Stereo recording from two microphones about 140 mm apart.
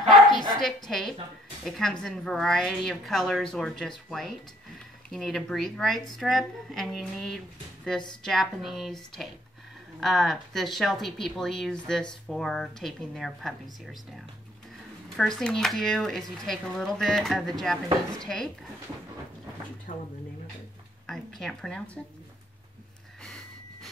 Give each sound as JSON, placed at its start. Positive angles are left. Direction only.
{"t": 0.6, "sound": "speech", "side_deg": 5}
{"t": 19.9, "sound": "speech", "side_deg": 65}
{"t": 21.1, "sound": "speech", "side_deg": 5}
{"t": 23.2, "sound": "snort", "side_deg": 5}